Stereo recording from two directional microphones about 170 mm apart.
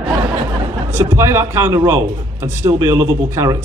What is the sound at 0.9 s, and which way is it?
A man's voice, 15° right (ahead or behind).